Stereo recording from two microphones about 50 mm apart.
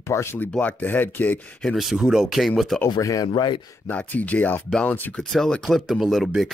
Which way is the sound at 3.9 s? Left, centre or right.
Left.